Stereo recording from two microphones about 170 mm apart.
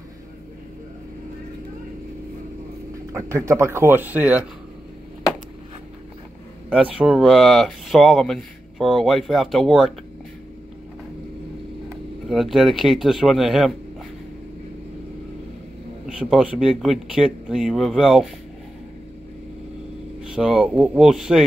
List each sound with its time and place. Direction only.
3.1 s speech: 15° right (ahead or behind)
6.7 s speech: 5° right (ahead or behind)
12.3 s speech: centre (ahead or behind)
16.2 s speech: 5° right (ahead or behind)
20.3 s speech: 5° right (ahead or behind)